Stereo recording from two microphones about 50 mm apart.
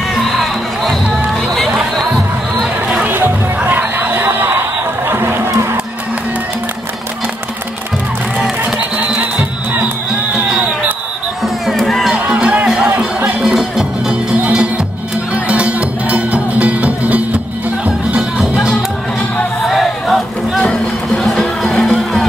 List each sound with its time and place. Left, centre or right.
0.1 s music: centre
3.1 s music: right
8.7 s music: right
11.7 s music: centre
12.3 s music: right
12.6 s music: centre
15.4 s music: right
19.7 s a sound: centre
21.2 s music: centre